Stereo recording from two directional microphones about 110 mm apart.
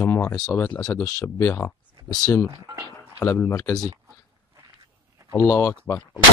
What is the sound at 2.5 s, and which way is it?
Speech, 30° right (ahead or behind).